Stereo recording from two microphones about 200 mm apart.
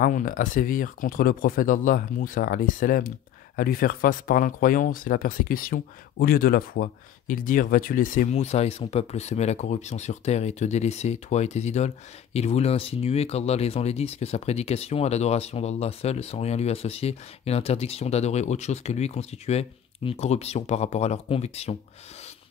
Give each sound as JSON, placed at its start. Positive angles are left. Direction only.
{"t": 0.0, "sound": "speech", "side_deg": 40}